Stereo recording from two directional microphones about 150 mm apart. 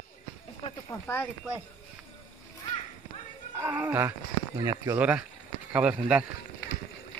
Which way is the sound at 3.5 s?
15° right (ahead or behind).